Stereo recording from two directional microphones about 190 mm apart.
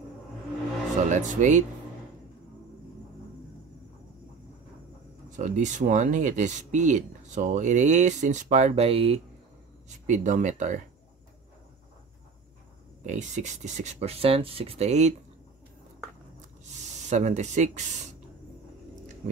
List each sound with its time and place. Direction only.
0.9 s speech: 40° right (ahead or behind)
5.3 s speech: 40° right (ahead or behind)
13.0 s speech: 40° right (ahead or behind)
17.1 s speech: 40° right (ahead or behind)